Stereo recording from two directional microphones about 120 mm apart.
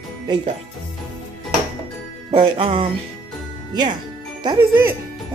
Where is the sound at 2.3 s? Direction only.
45° right (ahead or behind).